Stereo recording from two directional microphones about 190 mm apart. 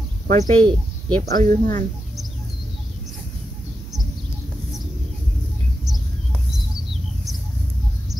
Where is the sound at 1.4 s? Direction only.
45° right (ahead or behind).